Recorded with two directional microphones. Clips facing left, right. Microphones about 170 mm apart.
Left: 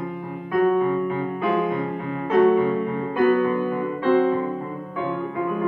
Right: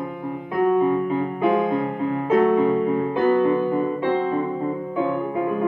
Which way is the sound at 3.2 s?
20° right (ahead or behind).